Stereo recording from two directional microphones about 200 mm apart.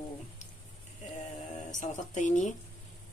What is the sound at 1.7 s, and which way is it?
Speech, 40° left (ahead or behind).